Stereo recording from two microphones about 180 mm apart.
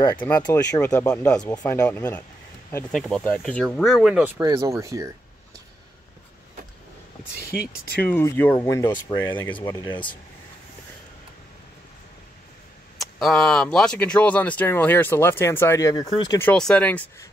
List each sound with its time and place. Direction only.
0.3 s speech: 20° left (ahead or behind); by 4.3 s 5° right (ahead or behind)
4.4 s speech: 20° right (ahead or behind)
7.3 s speech: 60° left (ahead or behind)
8.0 s speech: 10° left (ahead or behind)
13.0 s speech: centre (ahead or behind); by 16.4 s 20° left (ahead or behind)
16.4 s speech: 5° left (ahead or behind)